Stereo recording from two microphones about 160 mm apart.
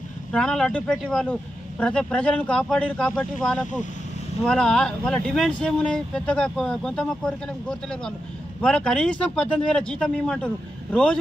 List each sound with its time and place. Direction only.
0.3 s a man's voice: 5° left (ahead or behind)